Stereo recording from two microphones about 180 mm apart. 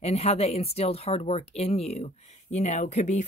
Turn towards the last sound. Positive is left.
turn(degrees=40)  # may be behind; listen again after turning